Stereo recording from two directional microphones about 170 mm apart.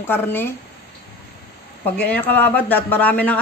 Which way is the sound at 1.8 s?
10° left (ahead or behind).